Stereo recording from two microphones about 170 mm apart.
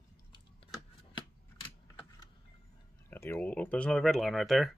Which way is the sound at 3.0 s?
15° left (ahead or behind).